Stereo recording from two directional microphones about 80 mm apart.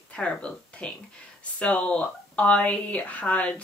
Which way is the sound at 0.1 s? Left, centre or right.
Centre.